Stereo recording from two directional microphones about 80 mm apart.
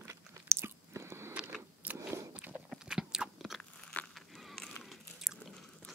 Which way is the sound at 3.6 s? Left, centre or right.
Centre.